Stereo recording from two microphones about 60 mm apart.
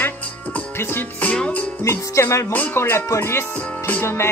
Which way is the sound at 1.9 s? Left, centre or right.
Left.